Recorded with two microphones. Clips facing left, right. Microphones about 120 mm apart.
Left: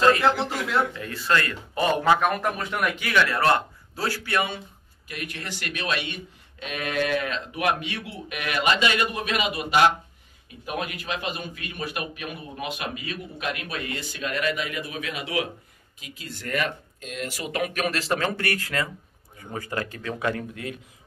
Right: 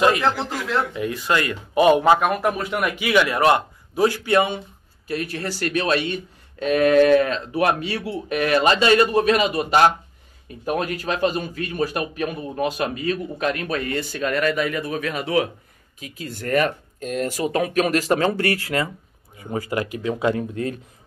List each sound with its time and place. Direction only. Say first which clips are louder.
0.2 s a man's voice: even; 5° left (ahead or behind)
0.9 s speech: right 3 dB; 15° right (ahead or behind)
5.0 s speech: right 9 dB; 35° right (ahead or behind)
19.5 s speech: right 6 dB; 20° right (ahead or behind)